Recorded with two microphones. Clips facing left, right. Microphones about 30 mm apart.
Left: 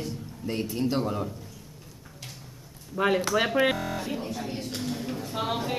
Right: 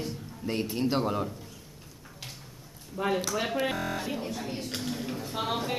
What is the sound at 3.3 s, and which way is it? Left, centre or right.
Speech, left.